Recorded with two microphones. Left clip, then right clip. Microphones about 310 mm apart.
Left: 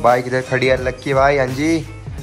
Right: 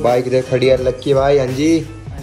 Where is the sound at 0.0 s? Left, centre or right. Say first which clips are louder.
Even; centre.